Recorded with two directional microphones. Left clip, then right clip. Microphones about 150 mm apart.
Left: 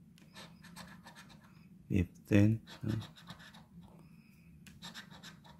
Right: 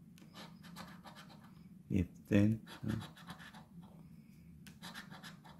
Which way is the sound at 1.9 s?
30° left (ahead or behind).